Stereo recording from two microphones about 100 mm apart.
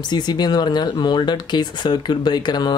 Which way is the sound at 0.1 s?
45° left (ahead or behind).